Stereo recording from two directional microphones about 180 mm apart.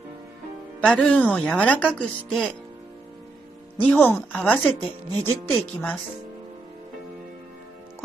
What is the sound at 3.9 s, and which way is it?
Speech, 10° left (ahead or behind).